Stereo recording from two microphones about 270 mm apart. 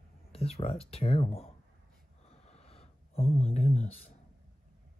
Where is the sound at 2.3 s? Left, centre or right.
Left.